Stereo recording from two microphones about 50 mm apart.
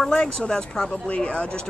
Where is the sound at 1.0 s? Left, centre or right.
Left.